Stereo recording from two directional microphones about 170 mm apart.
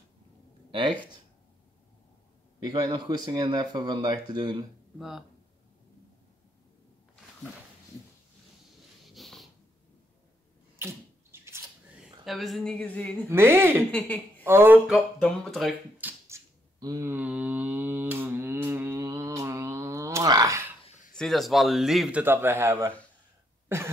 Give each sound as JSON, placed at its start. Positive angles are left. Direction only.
{"t": 0.7, "sound": "speech", "side_deg": -30}
{"t": 2.6, "sound": "speech", "side_deg": -25}
{"t": 4.9, "sound": "speech", "side_deg": 0}
{"t": 9.0, "sound": "a sound", "side_deg": 0}
{"t": 10.8, "sound": "bathtub", "side_deg": -15}
{"t": 12.0, "sound": "a woman's voice", "side_deg": 0}
{"t": 13.3, "sound": "speech", "side_deg": -15}
{"t": 13.9, "sound": "a woman's voice", "side_deg": 10}
{"t": 14.4, "sound": "speech", "side_deg": -15}
{"t": 15.5, "sound": "a sound", "side_deg": -5}
{"t": 20.8, "sound": "a sound", "side_deg": 40}
{"t": 21.1, "sound": "speech", "side_deg": 0}